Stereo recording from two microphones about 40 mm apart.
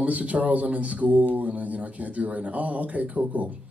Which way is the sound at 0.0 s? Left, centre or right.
Right.